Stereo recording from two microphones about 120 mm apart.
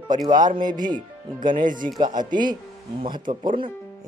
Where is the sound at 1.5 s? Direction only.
90° right.